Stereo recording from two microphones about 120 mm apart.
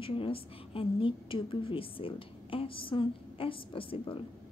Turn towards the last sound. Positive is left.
turn(degrees=45)  # may be behind; listen again after turning